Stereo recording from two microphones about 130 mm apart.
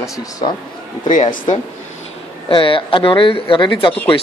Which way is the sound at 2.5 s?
40° left (ahead or behind).